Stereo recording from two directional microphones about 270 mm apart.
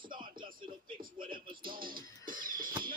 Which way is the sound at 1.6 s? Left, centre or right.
Right.